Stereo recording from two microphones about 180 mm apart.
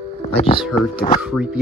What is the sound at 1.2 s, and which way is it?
Speech, 5° right (ahead or behind).